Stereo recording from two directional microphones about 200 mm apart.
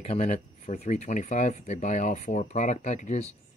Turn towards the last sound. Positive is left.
turn(degrees=35)  # may be behind; listen again after turning